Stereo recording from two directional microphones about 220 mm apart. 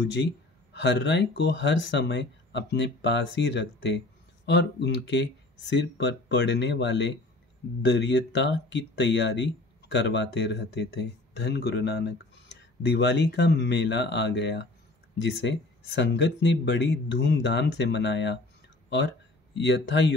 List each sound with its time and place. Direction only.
0.0 s speech: 55° left (ahead or behind)
19.5 s speech: 50° left (ahead or behind)